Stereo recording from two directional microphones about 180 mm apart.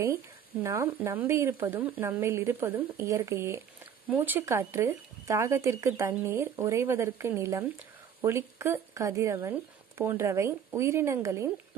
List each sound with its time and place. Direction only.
0.0 s speech: 15° right (ahead or behind)